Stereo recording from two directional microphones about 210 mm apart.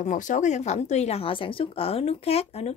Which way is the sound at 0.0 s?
35° left (ahead or behind).